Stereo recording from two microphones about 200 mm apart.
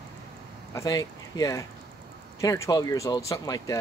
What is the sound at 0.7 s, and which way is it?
Speech, 20° left (ahead or behind).